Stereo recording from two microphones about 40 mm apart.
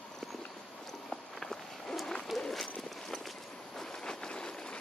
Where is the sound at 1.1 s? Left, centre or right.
Centre.